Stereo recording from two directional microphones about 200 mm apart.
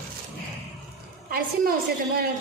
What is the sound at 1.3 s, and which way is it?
Speech, 45° right (ahead or behind).